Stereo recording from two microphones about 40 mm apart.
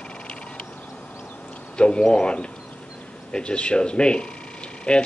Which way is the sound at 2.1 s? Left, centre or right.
Left.